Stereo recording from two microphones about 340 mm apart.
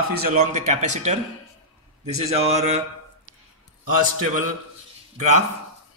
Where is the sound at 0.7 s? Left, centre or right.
Right.